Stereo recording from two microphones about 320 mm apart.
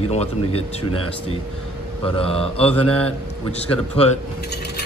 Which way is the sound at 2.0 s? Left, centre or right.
Centre.